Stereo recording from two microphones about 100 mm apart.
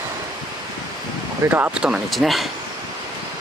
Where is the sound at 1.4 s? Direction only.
20° right (ahead or behind).